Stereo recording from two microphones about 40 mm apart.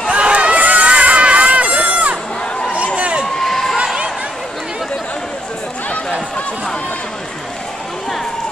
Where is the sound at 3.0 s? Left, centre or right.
Right.